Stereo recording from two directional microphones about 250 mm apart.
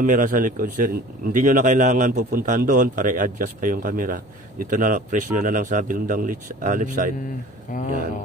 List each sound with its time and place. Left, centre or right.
0.0 s a man's voice: right